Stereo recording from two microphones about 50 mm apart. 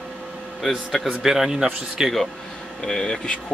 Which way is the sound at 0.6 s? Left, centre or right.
Centre.